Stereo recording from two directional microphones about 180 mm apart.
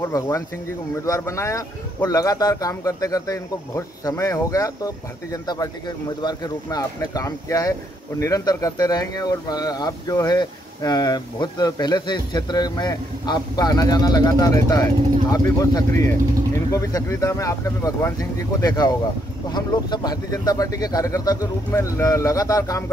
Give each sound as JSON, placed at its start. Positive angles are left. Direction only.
{"t": 0.0, "sound": "speech", "side_deg": 15}